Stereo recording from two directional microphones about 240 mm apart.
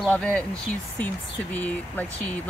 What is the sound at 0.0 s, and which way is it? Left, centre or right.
Speech, centre.